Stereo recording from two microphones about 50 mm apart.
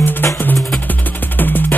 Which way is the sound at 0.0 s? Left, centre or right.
Left.